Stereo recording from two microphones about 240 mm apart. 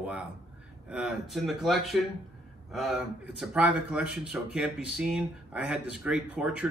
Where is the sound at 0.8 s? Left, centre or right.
Centre.